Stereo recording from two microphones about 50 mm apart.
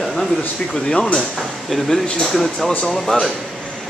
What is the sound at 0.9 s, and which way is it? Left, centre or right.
Speech, centre.